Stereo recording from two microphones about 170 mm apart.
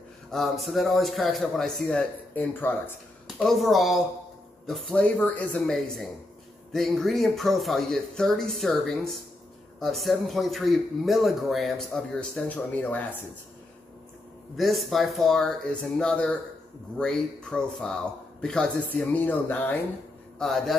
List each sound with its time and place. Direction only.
0.3 s speech: centre (ahead or behind)
3.3 s speech: centre (ahead or behind)
14.6 s speech: centre (ahead or behind)